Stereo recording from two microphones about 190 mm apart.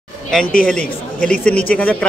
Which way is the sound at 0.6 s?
5° left (ahead or behind).